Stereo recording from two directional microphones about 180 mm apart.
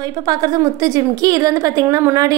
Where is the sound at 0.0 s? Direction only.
20° right (ahead or behind).